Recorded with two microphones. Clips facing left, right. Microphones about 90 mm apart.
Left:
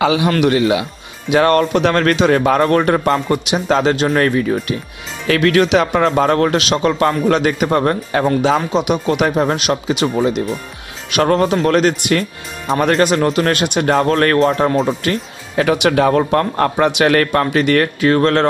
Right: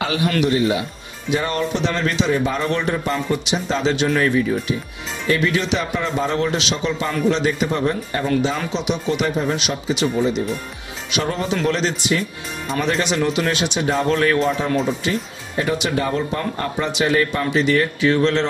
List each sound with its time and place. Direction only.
0.4 s a man's voice: 85° left
1.3 s speech: 70° left (ahead or behind)
2.7 s speech: 60° left (ahead or behind)
3.9 s speech: 40° left (ahead or behind)
5.2 s speech: 85° left
8.5 s speech: 50° left (ahead or behind)
15.0 s speech: 85° left; by 18.5 s 50° left (ahead or behind)